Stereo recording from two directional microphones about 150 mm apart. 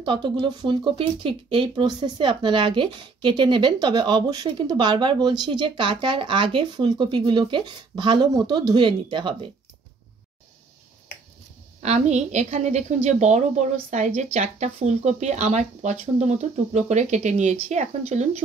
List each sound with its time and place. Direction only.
0.0 s speech: 35° right (ahead or behind)
11.8 s a woman's voice: 50° right (ahead or behind)